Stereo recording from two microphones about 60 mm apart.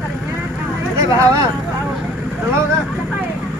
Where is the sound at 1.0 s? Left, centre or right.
Right.